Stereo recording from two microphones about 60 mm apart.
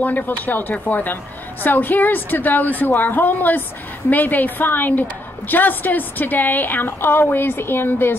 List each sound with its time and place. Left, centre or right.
0.0 s a woman's voice: left